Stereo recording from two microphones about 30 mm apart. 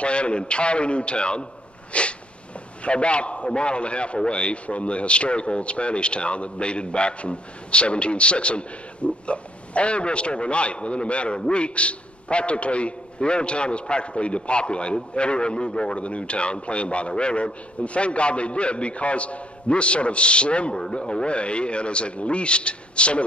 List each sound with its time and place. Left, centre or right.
0.0 s a man's voice: left
1.9 s sneeze: left
2.8 s a man's voice: left
20.7 s a man's voice: left